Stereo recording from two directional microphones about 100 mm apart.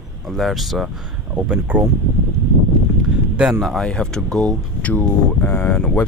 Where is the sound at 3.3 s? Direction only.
5° right (ahead or behind).